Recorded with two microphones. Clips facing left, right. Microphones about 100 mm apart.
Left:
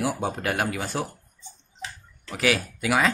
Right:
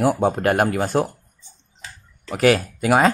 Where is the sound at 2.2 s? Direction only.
45° right (ahead or behind).